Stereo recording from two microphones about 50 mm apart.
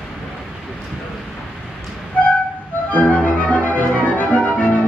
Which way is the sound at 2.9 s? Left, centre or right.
Left.